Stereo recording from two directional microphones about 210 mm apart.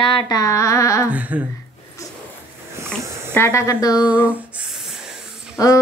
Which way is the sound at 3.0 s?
15° right (ahead or behind).